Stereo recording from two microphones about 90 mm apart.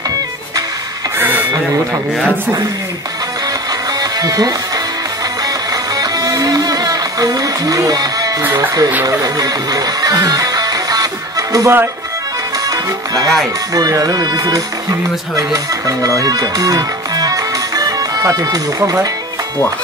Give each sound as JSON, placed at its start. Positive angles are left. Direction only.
{"t": 1.1, "sound": "printer", "side_deg": -20}
{"t": 4.0, "sound": "music", "side_deg": -45}
{"t": 12.6, "sound": "speech", "side_deg": -45}